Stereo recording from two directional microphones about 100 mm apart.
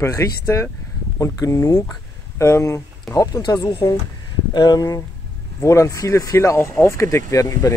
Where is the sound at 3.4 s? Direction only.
50° left (ahead or behind).